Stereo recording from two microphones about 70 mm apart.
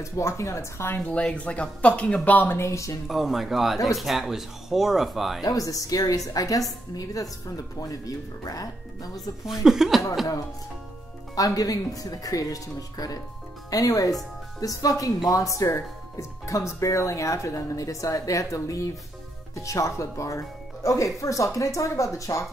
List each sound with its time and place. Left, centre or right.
0.0 s speech: left
1.0 s speech: centre
2.5 s speech: left
3.1 s speech: centre
5.4 s a woman's voice: left
9.5 s speech: centre
11.3 s a woman's voice: left